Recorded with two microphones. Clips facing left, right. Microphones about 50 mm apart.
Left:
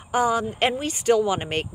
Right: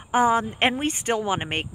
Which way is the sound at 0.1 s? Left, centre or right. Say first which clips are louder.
Right 2 dB; right.